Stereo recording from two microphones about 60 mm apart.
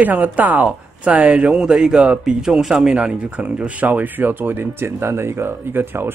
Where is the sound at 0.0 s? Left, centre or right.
Right.